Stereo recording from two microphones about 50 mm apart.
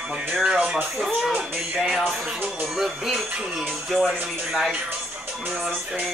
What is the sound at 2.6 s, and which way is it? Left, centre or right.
Music, centre.